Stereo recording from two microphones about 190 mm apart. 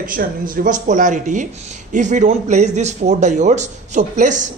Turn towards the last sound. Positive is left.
turn(degrees=-40)  # may be behind; listen again after turning